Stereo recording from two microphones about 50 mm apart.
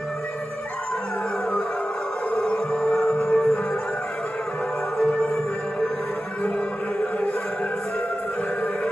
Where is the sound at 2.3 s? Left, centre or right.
Centre.